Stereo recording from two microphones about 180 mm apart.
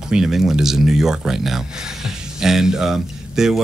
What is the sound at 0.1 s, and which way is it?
Speech, centre (ahead or behind).